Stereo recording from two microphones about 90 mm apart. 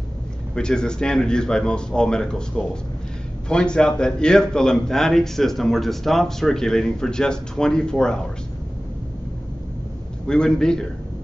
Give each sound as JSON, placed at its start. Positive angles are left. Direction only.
{"t": 0.6, "sound": "speech", "side_deg": 10}
{"t": 10.2, "sound": "speech", "side_deg": 10}